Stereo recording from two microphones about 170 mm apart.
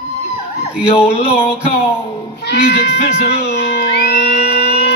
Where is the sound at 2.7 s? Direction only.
70° left (ahead or behind).